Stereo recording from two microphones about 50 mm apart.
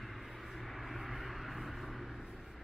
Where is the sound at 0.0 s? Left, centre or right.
Centre.